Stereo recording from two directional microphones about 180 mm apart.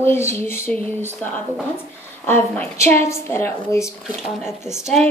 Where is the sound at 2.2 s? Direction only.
10° left (ahead or behind).